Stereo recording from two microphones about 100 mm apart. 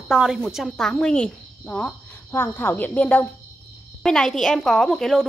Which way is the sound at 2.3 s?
25° left (ahead or behind).